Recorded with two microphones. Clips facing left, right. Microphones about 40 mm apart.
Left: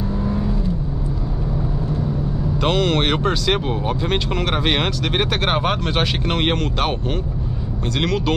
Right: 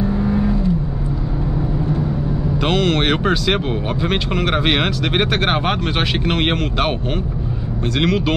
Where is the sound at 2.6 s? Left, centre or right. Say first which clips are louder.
Right 1 dB; centre.